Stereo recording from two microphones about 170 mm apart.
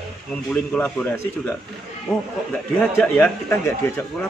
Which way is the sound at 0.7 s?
10° left (ahead or behind).